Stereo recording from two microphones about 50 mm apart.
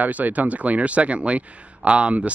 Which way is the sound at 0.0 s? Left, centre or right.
Right.